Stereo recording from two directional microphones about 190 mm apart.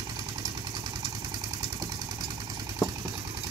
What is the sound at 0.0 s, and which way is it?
Vehicle, 20° right (ahead or behind).